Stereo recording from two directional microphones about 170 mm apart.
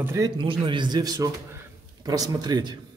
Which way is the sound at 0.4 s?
30° right (ahead or behind).